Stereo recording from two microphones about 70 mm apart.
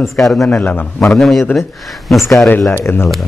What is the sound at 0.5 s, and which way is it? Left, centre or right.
Speech, left.